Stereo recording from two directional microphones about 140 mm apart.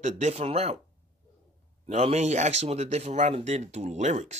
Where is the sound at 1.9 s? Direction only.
50° right (ahead or behind).